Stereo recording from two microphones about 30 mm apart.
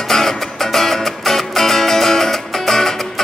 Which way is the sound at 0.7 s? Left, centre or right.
Centre.